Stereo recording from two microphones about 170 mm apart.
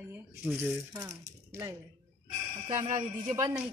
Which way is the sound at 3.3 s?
25° right (ahead or behind).